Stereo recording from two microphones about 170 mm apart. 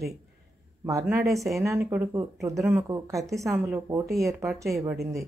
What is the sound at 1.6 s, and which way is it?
Speech, 15° right (ahead or behind).